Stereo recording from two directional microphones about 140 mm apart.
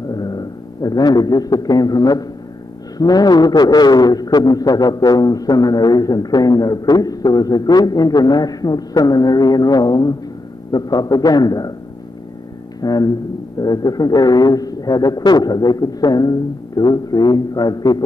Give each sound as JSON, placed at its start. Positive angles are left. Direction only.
{"t": 0.1, "sound": "a man's voice", "side_deg": 25}
{"t": 12.8, "sound": "a man's voice", "side_deg": 25}